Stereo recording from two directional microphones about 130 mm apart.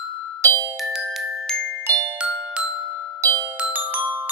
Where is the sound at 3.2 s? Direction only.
30° right (ahead or behind).